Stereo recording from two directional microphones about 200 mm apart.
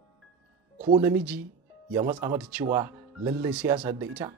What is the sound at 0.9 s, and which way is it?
Speech, 10° right (ahead or behind).